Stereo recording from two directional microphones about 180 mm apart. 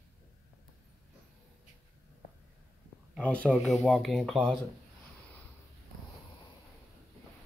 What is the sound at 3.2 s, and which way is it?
Speech, 5° left (ahead or behind).